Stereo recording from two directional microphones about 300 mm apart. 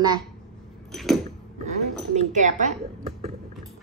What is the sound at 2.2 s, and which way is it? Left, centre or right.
Speech, right.